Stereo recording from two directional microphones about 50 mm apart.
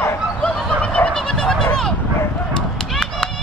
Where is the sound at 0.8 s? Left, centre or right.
Left.